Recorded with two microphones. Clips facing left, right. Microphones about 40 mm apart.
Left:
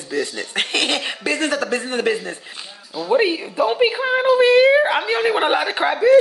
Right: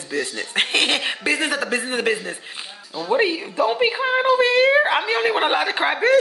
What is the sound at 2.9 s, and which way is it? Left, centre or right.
Speech, centre.